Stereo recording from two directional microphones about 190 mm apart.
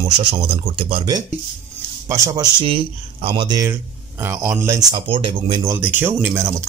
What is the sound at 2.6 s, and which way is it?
A man's voice, 30° right (ahead or behind).